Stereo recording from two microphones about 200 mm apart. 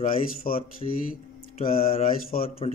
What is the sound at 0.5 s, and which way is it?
Speech, 45° left (ahead or behind).